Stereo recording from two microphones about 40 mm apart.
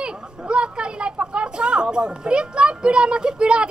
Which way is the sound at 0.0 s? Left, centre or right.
Right.